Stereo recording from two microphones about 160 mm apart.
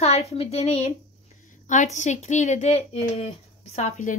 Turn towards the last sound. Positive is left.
turn(degrees=45)  # may be behind; listen again after turning